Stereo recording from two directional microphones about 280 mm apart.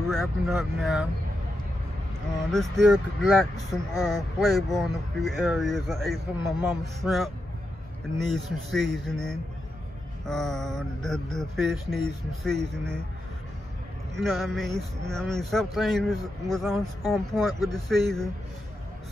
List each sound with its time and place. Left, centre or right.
0.0 s speech: centre
2.5 s speech: centre
8.3 s speech: centre
14.1 s speech: centre